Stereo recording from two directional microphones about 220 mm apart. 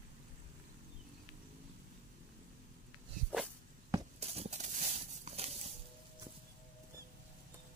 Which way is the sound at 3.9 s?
30° right (ahead or behind).